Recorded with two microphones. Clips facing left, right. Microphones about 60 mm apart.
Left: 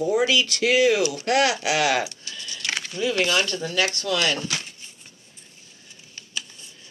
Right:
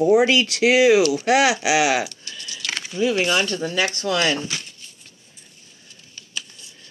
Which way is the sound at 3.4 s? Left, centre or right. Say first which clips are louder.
Right 2 dB; right.